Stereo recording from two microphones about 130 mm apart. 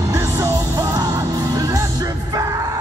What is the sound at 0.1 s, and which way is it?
Music, 25° right (ahead or behind).